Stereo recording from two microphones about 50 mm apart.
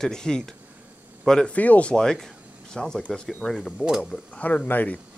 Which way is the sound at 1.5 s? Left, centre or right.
Left.